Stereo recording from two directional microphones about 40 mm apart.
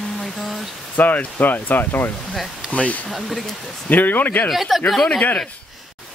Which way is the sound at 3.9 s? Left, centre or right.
Left.